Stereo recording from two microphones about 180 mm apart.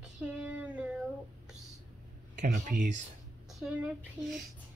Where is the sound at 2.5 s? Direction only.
45° right (ahead or behind).